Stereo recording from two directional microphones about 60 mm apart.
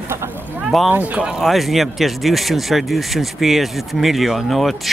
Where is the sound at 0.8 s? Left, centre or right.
Right.